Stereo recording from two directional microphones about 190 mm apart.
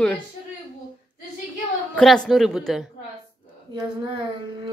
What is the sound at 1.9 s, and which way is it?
Speech, 5° left (ahead or behind).